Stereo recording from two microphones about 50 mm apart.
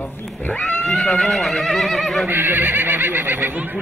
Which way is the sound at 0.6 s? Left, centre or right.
Left.